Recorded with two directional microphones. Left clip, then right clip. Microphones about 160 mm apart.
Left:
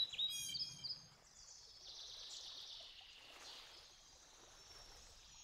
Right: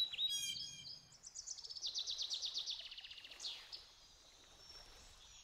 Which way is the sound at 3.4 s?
10° right (ahead or behind).